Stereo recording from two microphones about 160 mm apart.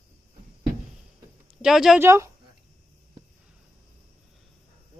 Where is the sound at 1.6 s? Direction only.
5° right (ahead or behind).